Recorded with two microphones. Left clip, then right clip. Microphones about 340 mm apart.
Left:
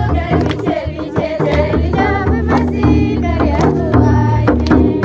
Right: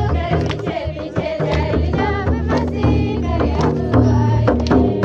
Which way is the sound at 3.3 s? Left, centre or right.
Centre.